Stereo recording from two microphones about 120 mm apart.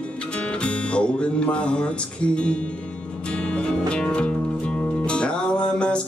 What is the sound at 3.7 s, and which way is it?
Music, 10° left (ahead or behind).